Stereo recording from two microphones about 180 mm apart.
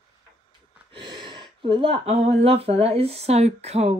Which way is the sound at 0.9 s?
25° right (ahead or behind).